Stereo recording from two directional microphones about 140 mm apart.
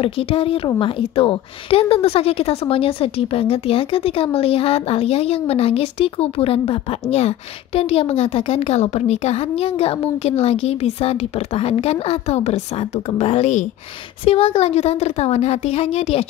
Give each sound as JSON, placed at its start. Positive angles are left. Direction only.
{"t": 0.0, "sound": "speech", "side_deg": 40}